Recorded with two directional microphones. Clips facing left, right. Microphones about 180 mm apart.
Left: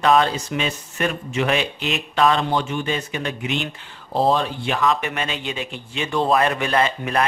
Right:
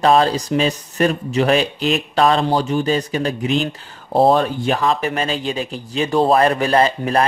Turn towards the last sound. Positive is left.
turn(degrees=-35)  # may be behind; listen again after turning